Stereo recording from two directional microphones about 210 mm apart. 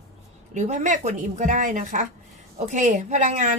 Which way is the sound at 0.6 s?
35° right (ahead or behind).